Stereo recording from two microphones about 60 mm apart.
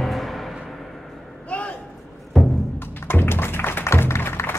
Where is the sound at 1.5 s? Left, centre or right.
Left.